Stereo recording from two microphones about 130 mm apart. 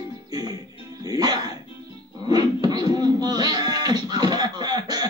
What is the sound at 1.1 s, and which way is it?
Music, 30° right (ahead or behind).